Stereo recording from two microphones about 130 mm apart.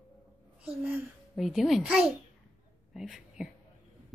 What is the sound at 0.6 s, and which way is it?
Speech, 15° right (ahead or behind).